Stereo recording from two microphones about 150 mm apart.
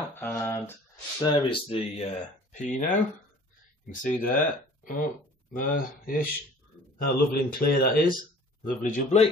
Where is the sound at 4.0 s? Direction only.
65° left (ahead or behind).